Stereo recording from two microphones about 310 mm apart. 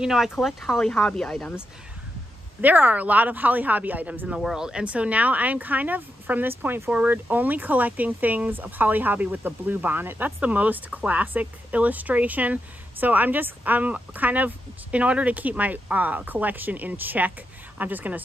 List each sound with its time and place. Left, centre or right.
0.0 s speech: centre
2.6 s speech: centre